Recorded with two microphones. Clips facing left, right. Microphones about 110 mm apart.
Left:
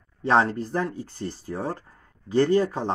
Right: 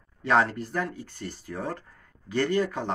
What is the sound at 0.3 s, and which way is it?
Speech, 25° left (ahead or behind).